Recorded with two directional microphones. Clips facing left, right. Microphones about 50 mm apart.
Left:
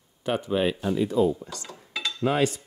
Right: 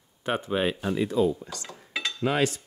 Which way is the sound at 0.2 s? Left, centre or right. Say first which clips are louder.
Left 2 dB; right.